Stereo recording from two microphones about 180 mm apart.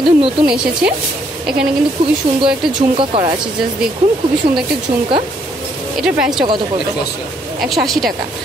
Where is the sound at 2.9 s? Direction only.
30° right (ahead or behind).